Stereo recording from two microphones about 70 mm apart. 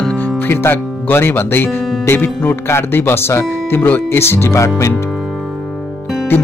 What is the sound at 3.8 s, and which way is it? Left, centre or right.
Speech, left.